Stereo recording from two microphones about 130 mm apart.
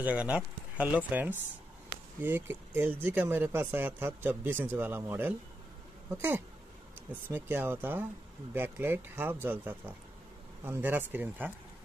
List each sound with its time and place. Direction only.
0.0 s speech: 10° right (ahead or behind)
7.2 s speech: 15° right (ahead or behind)